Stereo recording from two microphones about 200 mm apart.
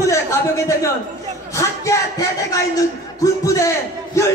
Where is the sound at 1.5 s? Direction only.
15° left (ahead or behind).